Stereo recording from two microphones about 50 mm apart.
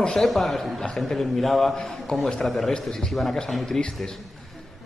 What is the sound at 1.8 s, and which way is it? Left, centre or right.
A man's voice, centre.